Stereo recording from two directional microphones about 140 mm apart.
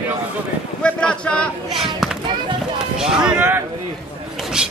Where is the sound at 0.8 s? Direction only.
5° left (ahead or behind).